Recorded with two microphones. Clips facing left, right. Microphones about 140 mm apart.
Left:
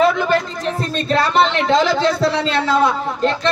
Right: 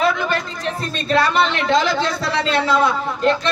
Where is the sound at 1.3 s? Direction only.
30° left (ahead or behind).